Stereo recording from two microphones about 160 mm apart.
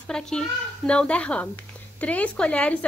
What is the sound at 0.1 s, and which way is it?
A woman's voice, 5° left (ahead or behind).